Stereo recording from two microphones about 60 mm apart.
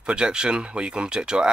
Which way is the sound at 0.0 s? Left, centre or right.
Centre.